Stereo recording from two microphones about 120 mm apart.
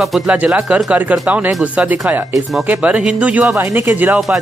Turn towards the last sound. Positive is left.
turn(degrees=-15)  # may be behind; listen again after turning